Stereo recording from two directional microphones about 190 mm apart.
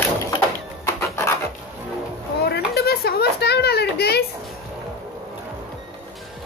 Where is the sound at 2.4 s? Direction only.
55° left (ahead or behind).